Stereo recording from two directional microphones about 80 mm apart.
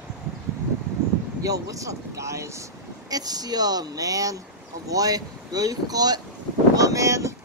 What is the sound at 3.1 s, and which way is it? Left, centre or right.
Speech, right.